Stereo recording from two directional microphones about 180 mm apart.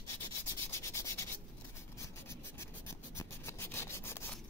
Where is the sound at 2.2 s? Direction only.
15° left (ahead or behind).